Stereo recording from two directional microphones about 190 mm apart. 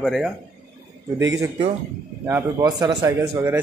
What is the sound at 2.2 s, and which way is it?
Speech, 15° right (ahead or behind).